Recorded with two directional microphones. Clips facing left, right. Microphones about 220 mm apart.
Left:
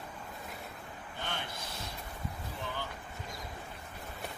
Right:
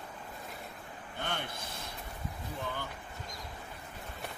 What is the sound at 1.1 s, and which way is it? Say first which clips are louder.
Vehicle: right 3 dB; 55° right (ahead or behind).